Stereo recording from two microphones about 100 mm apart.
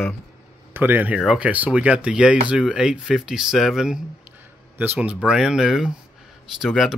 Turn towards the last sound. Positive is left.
turn(degrees=0)  # may be behind; listen again after turning